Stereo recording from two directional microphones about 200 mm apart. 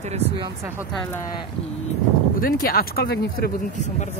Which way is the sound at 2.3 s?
45° left (ahead or behind).